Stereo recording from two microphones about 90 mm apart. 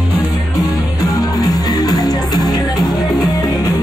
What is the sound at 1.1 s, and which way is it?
Music, 50° left (ahead or behind).